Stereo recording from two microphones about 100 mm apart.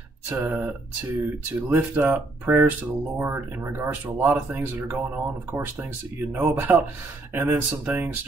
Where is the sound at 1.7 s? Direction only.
15° right (ahead or behind).